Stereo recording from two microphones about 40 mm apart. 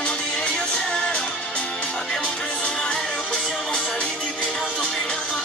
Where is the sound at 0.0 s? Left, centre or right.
Left.